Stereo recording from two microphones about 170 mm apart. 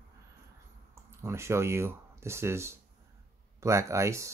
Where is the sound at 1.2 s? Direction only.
15° right (ahead or behind).